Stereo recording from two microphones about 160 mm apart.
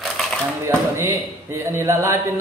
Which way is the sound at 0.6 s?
15° right (ahead or behind).